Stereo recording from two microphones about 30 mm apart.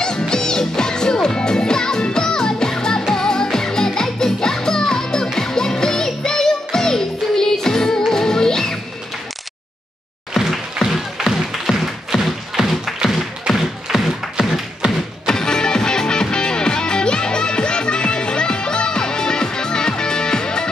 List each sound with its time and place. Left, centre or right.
0.0 s music: left
10.3 s a sound: centre
11.2 s music: right
11.8 s music: centre
14.3 s tap: centre
15.2 s music: left